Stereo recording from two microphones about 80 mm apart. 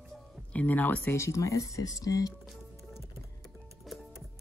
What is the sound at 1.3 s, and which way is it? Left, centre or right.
Speech, left.